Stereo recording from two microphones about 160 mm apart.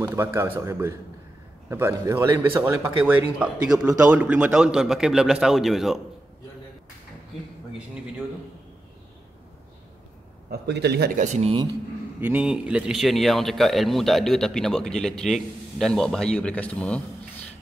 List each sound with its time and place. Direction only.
0.0 s a man's voice: 15° right (ahead or behind)
10.5 s speech: 90° right
11.1 s speech: 45° right (ahead or behind)
12.2 s a man's voice: 10° right (ahead or behind)